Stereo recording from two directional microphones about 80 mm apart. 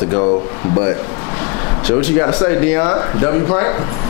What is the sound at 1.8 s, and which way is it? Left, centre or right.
Speech, centre.